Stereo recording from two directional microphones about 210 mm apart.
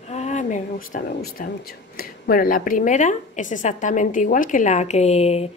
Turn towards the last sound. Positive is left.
turn(degrees=30)  # may be behind; listen again after turning